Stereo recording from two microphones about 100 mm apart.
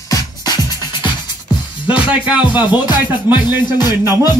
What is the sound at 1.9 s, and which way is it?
Music, 15° right (ahead or behind).